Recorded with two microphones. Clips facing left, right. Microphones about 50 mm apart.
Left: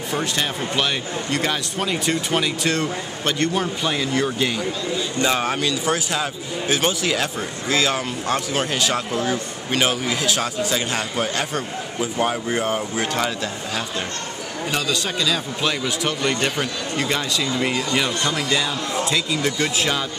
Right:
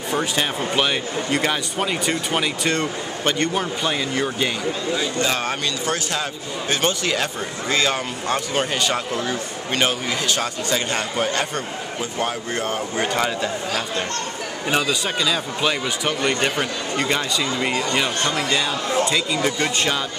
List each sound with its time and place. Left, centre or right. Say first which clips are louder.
0.1 s speech: right 2 dB; centre
14.9 s speech: right 1 dB; centre
18.2 s speech: right 1 dB; right
18.5 s speech: right 1 dB; centre